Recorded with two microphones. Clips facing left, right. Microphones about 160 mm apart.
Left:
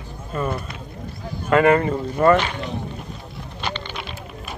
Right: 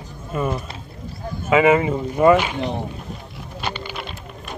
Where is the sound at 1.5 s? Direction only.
5° right (ahead or behind).